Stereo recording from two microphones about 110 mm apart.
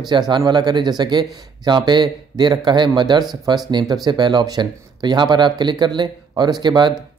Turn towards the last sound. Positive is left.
turn(degrees=-40)  # may be behind; listen again after turning